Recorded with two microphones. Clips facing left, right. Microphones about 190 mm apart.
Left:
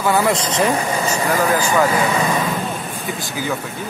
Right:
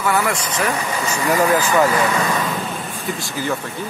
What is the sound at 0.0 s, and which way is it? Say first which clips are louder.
Speech: left 3 dB; 20° left (ahead or behind).